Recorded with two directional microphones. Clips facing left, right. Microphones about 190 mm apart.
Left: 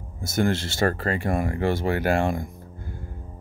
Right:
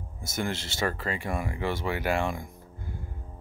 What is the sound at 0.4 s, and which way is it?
Speech, 55° left (ahead or behind).